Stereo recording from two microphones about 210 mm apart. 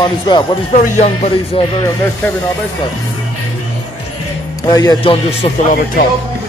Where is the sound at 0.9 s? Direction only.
30° left (ahead or behind).